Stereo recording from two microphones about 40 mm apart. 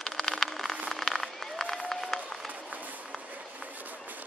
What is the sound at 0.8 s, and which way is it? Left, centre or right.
Run, centre.